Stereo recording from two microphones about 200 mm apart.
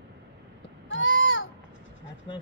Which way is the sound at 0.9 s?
75° left (ahead or behind).